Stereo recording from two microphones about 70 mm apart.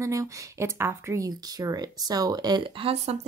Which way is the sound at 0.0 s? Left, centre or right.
Right.